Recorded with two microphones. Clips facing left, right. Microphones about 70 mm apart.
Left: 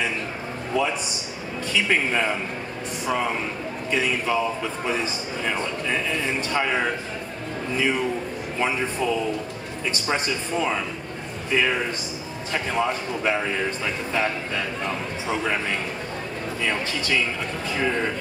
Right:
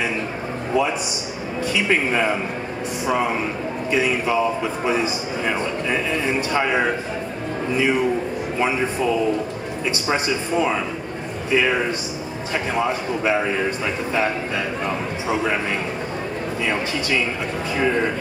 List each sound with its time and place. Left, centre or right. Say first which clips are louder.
0.7 s a man's voice: right 3 dB; centre
14.9 s a man's voice: right 4 dB; centre
16.6 s a man's voice: right 2 dB; centre